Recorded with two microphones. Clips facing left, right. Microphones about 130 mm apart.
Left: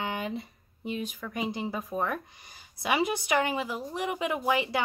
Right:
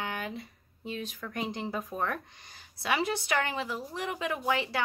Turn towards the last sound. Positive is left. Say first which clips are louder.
# left 3 dB
turn(degrees=15)  # may be behind; listen again after turning